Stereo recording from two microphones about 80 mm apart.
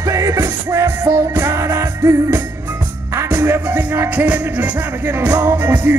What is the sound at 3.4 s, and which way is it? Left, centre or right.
Music, right.